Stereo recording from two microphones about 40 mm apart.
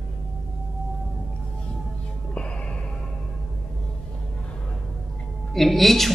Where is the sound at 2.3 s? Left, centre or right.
Left.